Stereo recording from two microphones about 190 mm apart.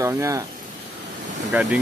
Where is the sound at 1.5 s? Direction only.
5° right (ahead or behind).